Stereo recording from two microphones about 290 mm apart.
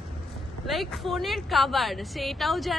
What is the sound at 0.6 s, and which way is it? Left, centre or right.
A woman's voice, centre.